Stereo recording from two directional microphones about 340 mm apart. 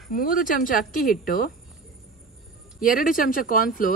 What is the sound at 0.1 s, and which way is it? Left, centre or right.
Speech, left.